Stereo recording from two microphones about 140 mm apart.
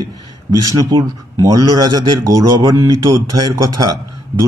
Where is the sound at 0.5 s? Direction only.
25° right (ahead or behind).